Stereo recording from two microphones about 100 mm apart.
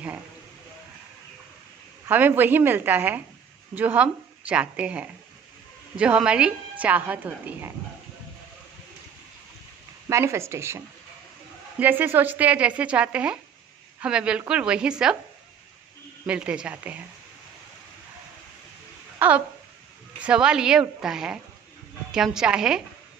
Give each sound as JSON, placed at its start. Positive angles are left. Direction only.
{"t": 2.0, "sound": "a woman's voice", "side_deg": -20}
{"t": 10.0, "sound": "a woman's voice", "side_deg": -30}
{"t": 11.8, "sound": "a woman's voice", "side_deg": -20}
{"t": 16.3, "sound": "a woman's voice", "side_deg": -10}
{"t": 19.1, "sound": "a woman's voice", "side_deg": -15}